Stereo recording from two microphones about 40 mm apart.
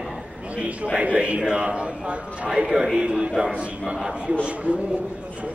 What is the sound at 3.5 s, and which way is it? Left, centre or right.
Speech, right.